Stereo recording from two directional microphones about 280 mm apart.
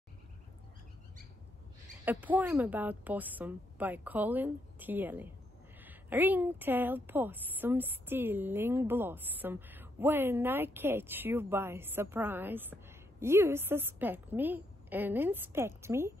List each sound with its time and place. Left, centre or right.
2.0 s a woman's voice: centre